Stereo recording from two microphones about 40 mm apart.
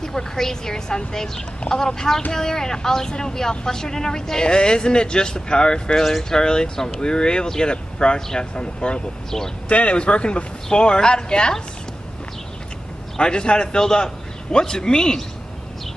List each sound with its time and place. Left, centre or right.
0.0 s speech: centre
6.0 s speech: centre
6.4 s a man's voice: centre
13.2 s a man's voice: left